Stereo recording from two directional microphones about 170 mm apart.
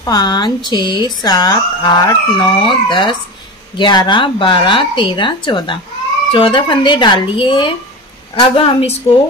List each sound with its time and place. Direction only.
0.0 s a woman's voice: 25° left (ahead or behind)